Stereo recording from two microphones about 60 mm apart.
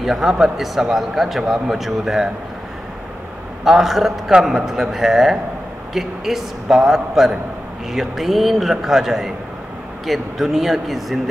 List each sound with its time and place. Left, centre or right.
0.0 s a man's voice: centre
3.6 s a man's voice: centre